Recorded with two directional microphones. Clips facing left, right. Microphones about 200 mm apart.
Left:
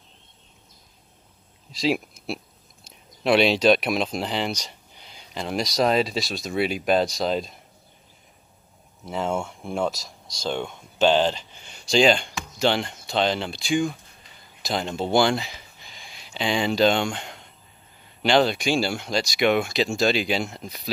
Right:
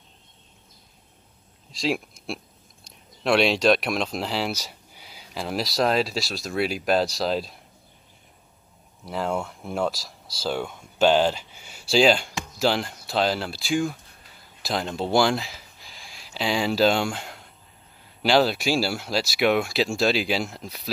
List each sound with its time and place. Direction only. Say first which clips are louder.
1.7 s speech: left 2 dB; centre (ahead or behind)
9.0 s speech: left 1 dB; centre (ahead or behind)